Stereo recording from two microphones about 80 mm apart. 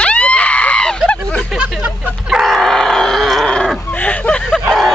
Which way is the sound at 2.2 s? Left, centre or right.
Centre.